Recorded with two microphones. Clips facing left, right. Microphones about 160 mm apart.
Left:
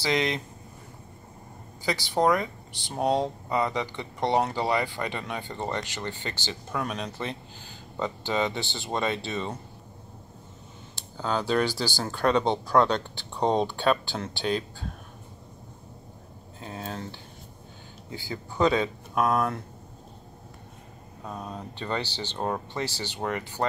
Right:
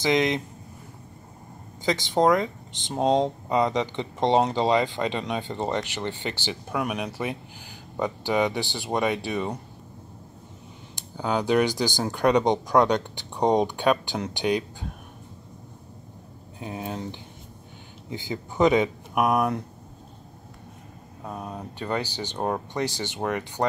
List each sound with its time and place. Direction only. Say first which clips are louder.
0.0 s speech: right 4 dB; 20° right (ahead or behind)
1.8 s speech: right 3 dB; 20° right (ahead or behind)
11.0 s speech: right 2 dB; 15° right (ahead or behind)
16.5 s speech: right 4 dB; 15° right (ahead or behind)
21.2 s speech: right 2 dB; 10° right (ahead or behind)